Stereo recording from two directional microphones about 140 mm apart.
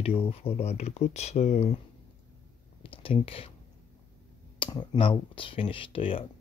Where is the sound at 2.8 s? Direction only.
40° left (ahead or behind).